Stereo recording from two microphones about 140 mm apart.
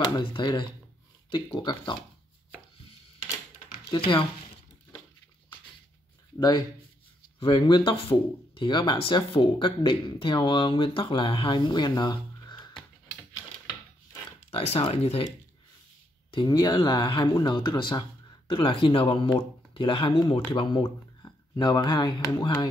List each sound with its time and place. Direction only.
0.2 s speech: 35° left (ahead or behind)
3.9 s speech: 40° left (ahead or behind)
7.3 s speech: 35° left (ahead or behind)
14.5 s speech: 45° left (ahead or behind)
16.3 s speech: 30° left (ahead or behind)